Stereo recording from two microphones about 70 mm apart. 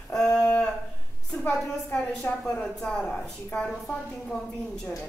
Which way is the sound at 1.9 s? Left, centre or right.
Centre.